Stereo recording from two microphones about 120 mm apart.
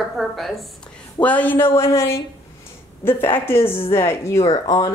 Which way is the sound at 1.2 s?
15° left (ahead or behind).